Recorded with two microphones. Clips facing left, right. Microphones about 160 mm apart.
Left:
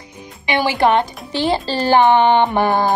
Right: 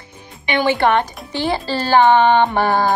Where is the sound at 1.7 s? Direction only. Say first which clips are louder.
Right 1 dB; 20° left (ahead or behind).